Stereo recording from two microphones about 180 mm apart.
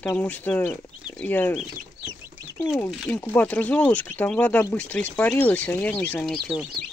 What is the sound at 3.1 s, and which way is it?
Speech, 10° left (ahead or behind).